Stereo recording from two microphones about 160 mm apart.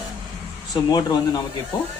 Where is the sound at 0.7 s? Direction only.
25° left (ahead or behind).